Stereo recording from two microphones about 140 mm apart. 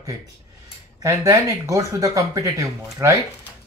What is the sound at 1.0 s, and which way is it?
Speech, 25° right (ahead or behind).